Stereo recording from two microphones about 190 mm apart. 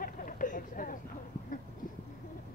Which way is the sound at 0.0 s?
45° left (ahead or behind).